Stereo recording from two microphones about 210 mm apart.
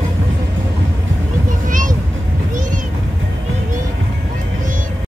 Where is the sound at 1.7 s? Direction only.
40° right (ahead or behind).